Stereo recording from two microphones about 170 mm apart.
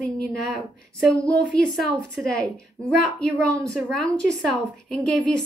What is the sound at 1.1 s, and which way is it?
Speech, 20° right (ahead or behind).